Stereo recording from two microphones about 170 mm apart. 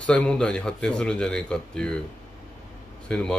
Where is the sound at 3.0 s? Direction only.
5° left (ahead or behind).